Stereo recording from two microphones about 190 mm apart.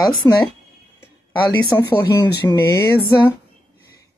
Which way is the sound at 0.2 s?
20° left (ahead or behind).